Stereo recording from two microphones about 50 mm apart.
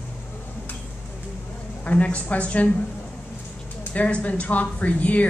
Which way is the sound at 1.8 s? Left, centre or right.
Left.